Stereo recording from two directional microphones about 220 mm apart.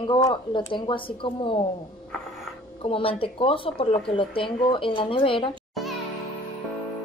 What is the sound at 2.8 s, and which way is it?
Speech, 25° left (ahead or behind).